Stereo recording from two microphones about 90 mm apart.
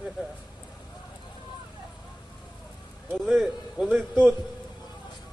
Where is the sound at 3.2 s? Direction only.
10° right (ahead or behind).